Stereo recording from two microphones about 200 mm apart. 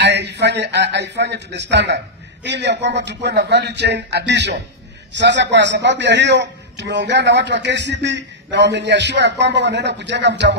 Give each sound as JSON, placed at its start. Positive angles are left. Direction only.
{"t": 0.0, "sound": "a man's voice", "side_deg": -60}